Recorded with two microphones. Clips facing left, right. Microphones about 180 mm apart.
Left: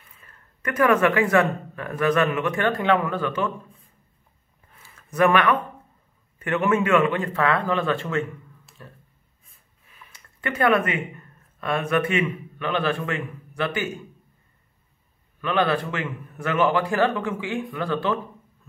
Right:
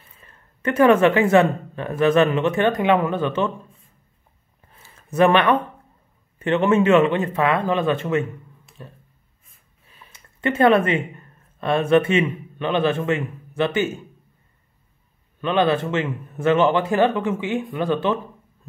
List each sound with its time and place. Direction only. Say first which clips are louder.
0.2 s speech: right 7 dB; 25° right (ahead or behind)
4.7 s a sound: right 4 dB; 25° right (ahead or behind)
6.4 s speech: right 5 dB; 25° right (ahead or behind)
10.1 s speech: right 6 dB; 25° right (ahead or behind)
15.4 s speech: right 3 dB; 20° right (ahead or behind)